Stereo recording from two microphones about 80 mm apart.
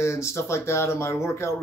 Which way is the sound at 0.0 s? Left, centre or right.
Left.